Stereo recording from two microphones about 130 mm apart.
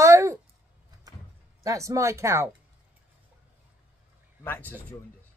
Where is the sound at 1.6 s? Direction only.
25° right (ahead or behind).